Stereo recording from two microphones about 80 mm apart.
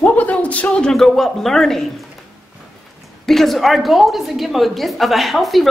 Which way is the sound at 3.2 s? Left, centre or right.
Centre.